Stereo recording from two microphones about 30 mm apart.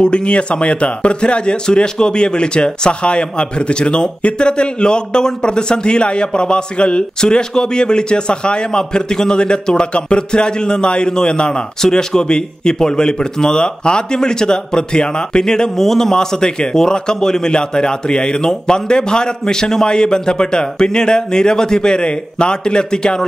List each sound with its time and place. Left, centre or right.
0.0 s a man's voice: left
15.7 s a man's voice: centre
17.5 s a man's voice: left